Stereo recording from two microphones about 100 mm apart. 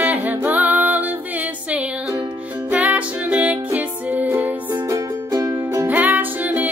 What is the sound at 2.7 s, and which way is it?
Music, 15° right (ahead or behind).